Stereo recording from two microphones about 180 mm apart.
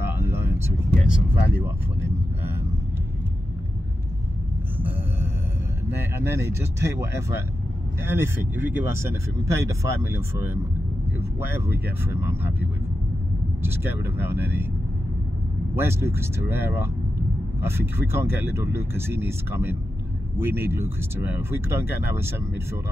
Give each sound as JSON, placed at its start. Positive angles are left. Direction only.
{"t": 0.0, "sound": "vehicle", "side_deg": -15}
{"t": 4.7, "sound": "a sound", "side_deg": -10}
{"t": 6.2, "sound": "speech", "side_deg": -15}
{"t": 13.6, "sound": "speech", "side_deg": -10}
{"t": 15.7, "sound": "speech", "side_deg": -15}